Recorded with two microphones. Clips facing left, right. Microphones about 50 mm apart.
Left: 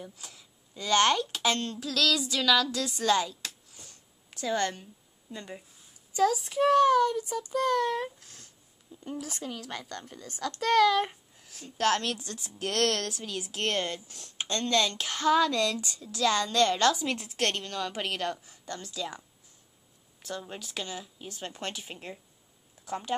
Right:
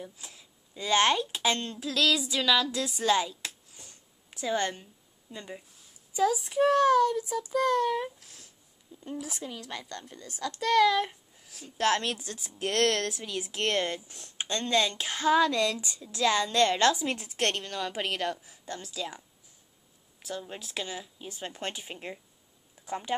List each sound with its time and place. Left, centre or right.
0.2 s a child's voice: right
6.1 s a child's voice: centre
12.0 s a child's voice: right